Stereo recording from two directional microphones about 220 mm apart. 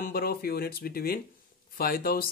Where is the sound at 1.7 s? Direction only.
40° left (ahead or behind).